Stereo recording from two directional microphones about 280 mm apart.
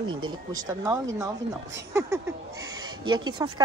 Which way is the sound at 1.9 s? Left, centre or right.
Centre.